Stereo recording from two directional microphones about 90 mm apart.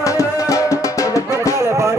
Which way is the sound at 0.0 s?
35° left (ahead or behind).